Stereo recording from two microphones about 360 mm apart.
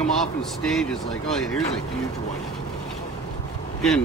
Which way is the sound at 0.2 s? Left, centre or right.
Centre.